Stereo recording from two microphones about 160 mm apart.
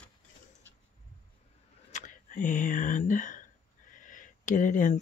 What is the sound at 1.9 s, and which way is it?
Speech, 50° left (ahead or behind).